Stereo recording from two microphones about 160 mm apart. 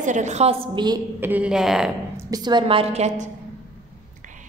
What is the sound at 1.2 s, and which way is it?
Speech, 10° right (ahead or behind).